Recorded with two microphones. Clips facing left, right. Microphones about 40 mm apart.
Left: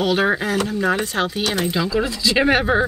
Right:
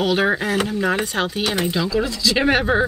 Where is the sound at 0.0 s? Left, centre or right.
Centre.